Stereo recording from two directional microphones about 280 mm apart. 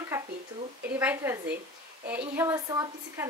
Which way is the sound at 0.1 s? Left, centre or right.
Centre.